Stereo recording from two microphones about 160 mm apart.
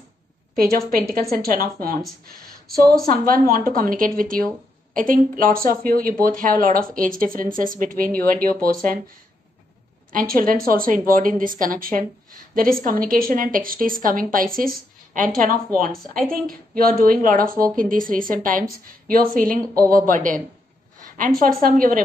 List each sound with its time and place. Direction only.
0.6 s a woman's voice: 65° right (ahead or behind)
2.4 s a sound: 65° right (ahead or behind)
3.1 s a woman's voice: 65° right (ahead or behind)
10.1 s a woman's voice: 60° right (ahead or behind)
19.6 s speech: 20° right (ahead or behind)
20.1 s a woman's voice: 55° right (ahead or behind)